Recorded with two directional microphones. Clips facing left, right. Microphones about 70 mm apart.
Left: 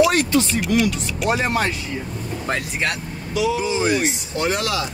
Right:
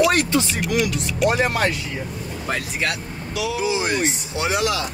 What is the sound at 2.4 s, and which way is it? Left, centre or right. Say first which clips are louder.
Speech: left 1 dB; left.